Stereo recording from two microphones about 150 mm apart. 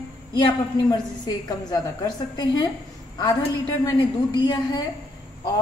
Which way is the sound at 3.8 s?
30° left (ahead or behind).